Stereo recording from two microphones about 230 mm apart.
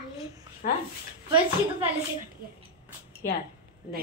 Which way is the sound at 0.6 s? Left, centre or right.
Left.